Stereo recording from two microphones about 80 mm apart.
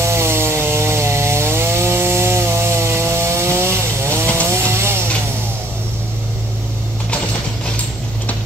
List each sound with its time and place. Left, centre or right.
0.0 s chainsaw: right